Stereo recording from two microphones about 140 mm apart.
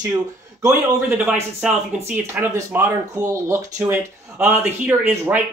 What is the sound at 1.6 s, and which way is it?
Speech, 15° right (ahead or behind).